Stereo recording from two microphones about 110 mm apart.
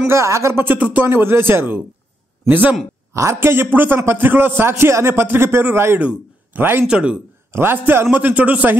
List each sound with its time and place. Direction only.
0.0 s a man's voice: 25° right (ahead or behind)
3.1 s a man's voice: 25° right (ahead or behind); by 7.2 s 10° right (ahead or behind)
7.5 s a man's voice: 20° right (ahead or behind)